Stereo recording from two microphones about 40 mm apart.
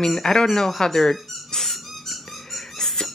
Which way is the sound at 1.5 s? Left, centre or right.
Centre.